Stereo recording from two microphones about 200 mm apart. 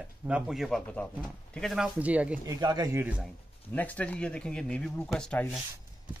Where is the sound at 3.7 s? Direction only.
5° left (ahead or behind).